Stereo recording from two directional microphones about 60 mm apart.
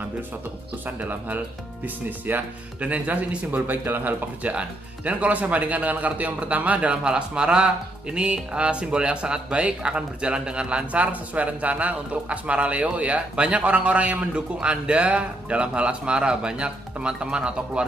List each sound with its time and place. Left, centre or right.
0.8 s speech: right